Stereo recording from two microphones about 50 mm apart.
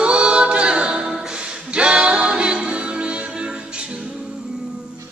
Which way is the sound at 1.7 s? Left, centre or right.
Right.